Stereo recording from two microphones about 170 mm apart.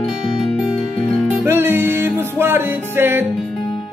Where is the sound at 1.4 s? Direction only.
15° right (ahead or behind).